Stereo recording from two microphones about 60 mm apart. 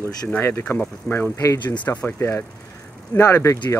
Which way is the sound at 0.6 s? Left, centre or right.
Left.